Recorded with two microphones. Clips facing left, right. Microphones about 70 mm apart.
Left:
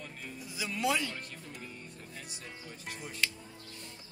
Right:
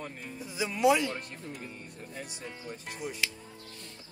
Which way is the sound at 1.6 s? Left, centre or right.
Right.